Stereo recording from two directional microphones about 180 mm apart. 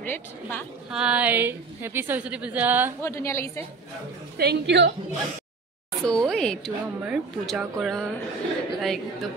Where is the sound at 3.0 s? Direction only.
15° left (ahead or behind).